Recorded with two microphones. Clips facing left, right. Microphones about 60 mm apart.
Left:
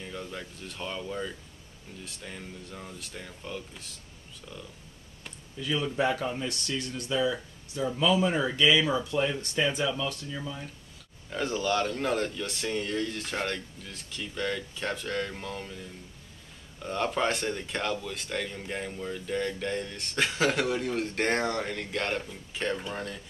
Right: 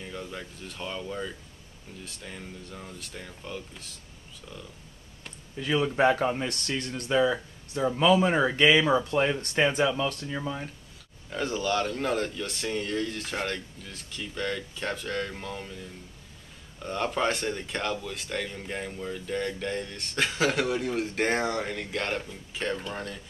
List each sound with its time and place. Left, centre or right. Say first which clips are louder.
0.0 s speech: right 1 dB; centre
5.6 s speech: right 4 dB; right
11.2 s speech: even; centre